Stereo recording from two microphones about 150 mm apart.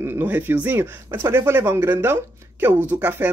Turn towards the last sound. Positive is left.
turn(degrees=-15)  # may be behind; listen again after turning